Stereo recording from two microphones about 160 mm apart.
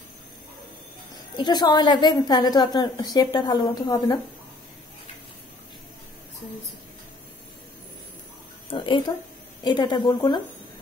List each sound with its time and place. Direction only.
1.3 s a woman's voice: 25° left (ahead or behind)
8.6 s a woman's voice: 30° left (ahead or behind)